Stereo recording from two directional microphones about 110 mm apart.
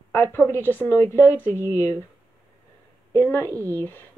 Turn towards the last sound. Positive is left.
turn(degrees=15)  # may be behind; listen again after turning